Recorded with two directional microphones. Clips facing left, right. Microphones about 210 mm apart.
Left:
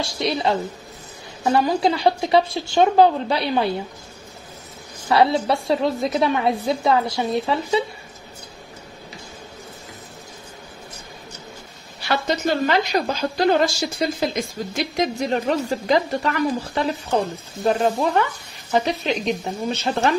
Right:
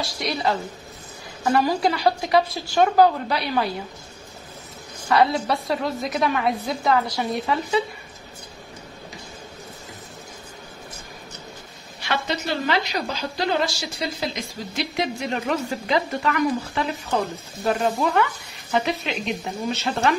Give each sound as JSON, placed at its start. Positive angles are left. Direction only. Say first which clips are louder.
{"t": 1.4, "sound": "a woman's voice", "louder": "left 2 dB", "side_deg": 25}
{"t": 5.1, "sound": "a woman's voice", "louder": "left 2 dB", "side_deg": 30}
{"t": 12.0, "sound": "a woman's voice", "louder": "left 4 dB", "side_deg": 40}